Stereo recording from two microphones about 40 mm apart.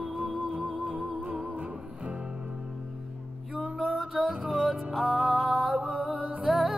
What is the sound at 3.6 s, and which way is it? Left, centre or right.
Music, centre.